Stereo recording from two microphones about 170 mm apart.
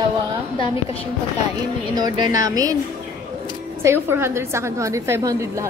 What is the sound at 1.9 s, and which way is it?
Speech, 25° right (ahead or behind).